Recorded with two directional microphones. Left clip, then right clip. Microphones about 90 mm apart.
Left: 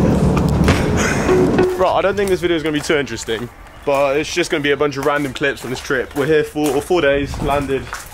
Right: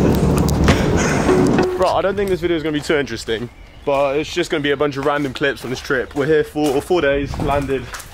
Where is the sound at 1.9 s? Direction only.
Centre (ahead or behind).